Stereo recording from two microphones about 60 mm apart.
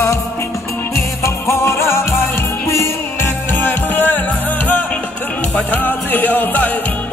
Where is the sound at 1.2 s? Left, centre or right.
Left.